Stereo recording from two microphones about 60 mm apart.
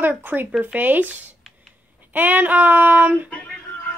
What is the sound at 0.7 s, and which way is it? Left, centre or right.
Speech, right.